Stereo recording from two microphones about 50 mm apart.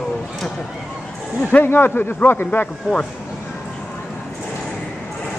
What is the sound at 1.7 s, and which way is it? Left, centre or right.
Speech, left.